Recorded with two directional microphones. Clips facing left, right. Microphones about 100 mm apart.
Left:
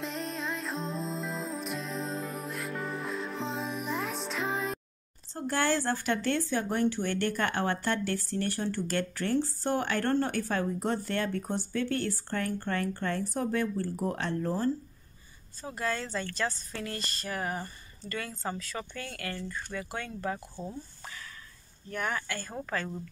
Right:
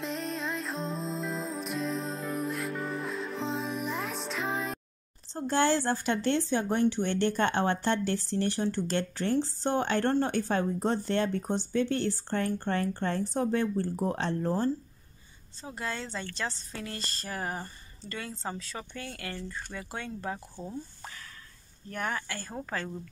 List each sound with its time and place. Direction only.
0.0 s music: centre (ahead or behind)
5.3 s speech: 20° right (ahead or behind)
21.9 s speech: 30° right (ahead or behind)